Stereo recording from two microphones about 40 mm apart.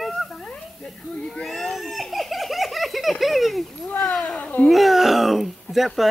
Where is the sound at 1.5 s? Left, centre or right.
Centre.